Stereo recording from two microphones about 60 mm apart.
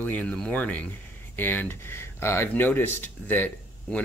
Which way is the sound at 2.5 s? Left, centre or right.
Left.